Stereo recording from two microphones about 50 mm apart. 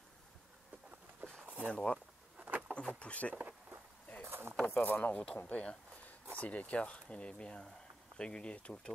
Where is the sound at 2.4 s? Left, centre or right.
Right.